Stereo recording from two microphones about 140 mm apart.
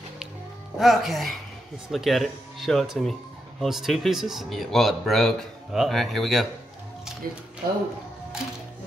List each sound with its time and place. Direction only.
0.7 s speech: centre (ahead or behind)
7.2 s speech: 85° right